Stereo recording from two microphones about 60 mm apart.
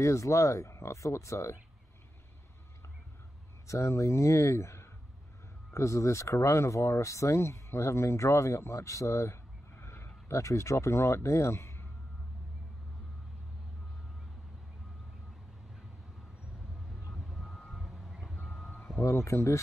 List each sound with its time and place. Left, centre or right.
0.0 s speech: left
3.6 s speech: left
17.1 s vehicle: centre
17.6 s reversing beeps: centre
18.9 s speech: left